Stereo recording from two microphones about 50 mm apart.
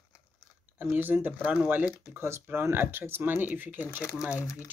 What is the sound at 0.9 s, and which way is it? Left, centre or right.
Speech, right.